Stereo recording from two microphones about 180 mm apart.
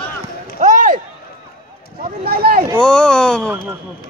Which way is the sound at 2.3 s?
55° right (ahead or behind).